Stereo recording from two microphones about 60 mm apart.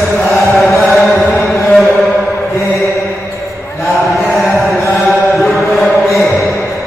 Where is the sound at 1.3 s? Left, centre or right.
Centre.